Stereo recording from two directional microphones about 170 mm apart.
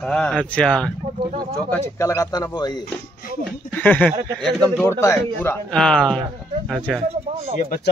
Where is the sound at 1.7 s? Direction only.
20° left (ahead or behind).